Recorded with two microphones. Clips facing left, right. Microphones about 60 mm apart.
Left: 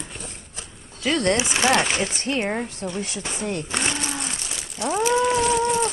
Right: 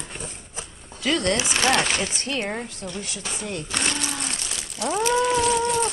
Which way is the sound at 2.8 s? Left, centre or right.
Centre.